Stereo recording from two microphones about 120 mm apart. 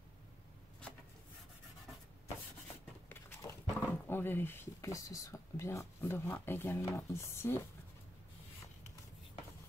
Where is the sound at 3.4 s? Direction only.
25° left (ahead or behind).